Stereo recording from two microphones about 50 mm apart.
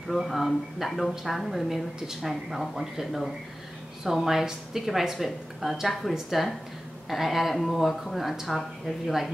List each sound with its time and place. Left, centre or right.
0.1 s a woman's voice: centre